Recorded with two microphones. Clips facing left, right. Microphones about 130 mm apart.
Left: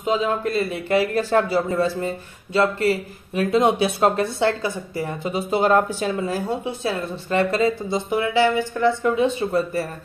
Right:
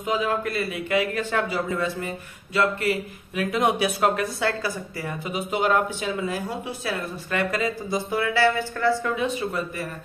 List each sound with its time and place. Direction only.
0.0 s a man's voice: 25° left (ahead or behind)